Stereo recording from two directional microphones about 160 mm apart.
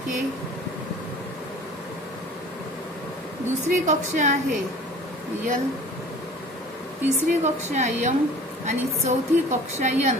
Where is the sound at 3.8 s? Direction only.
50° right (ahead or behind).